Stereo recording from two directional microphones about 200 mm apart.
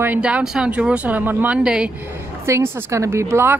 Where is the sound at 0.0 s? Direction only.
5° right (ahead or behind).